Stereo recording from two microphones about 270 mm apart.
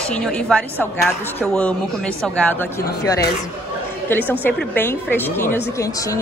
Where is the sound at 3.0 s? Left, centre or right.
Centre.